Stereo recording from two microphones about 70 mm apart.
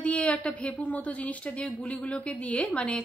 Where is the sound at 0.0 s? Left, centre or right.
Centre.